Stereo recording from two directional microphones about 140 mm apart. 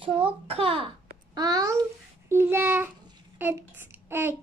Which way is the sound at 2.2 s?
15° right (ahead or behind).